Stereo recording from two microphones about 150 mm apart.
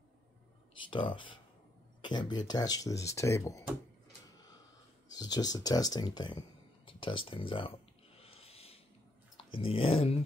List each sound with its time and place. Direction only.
0.8 s speech: 35° left (ahead or behind)
5.1 s speech: 25° left (ahead or behind)
8.2 s a sound: 40° left (ahead or behind)
9.6 s speech: 40° left (ahead or behind)